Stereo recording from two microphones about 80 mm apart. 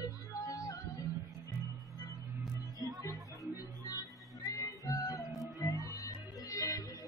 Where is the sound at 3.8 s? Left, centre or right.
Left.